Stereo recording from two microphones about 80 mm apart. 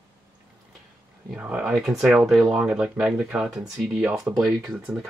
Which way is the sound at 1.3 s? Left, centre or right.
Centre.